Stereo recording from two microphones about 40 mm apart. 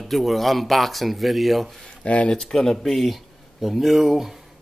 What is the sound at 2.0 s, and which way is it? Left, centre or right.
Speech, left.